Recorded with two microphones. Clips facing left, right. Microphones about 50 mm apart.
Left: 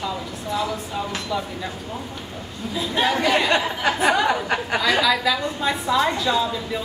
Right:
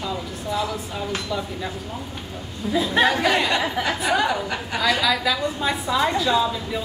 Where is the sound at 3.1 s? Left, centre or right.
Centre.